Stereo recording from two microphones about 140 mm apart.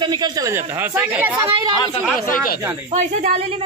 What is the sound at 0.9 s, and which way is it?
Speech, 15° right (ahead or behind).